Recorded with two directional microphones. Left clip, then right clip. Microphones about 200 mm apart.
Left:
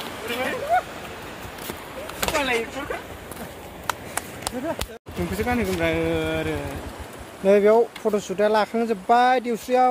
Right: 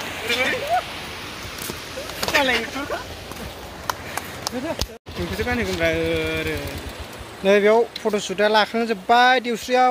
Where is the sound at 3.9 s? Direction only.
15° left (ahead or behind).